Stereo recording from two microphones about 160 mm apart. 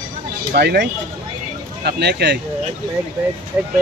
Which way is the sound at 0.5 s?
90° right.